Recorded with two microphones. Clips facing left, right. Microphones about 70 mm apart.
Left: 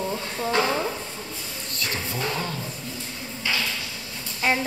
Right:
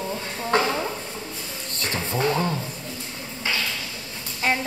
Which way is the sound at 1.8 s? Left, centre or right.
Right.